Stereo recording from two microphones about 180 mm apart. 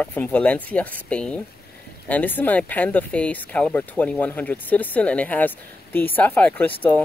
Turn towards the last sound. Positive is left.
turn(degrees=10)  # may be behind; listen again after turning